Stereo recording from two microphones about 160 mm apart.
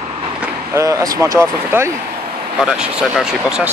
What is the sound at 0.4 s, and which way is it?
Speech, 20° right (ahead or behind).